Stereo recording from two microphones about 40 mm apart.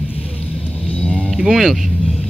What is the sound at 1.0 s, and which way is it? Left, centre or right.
Music, left.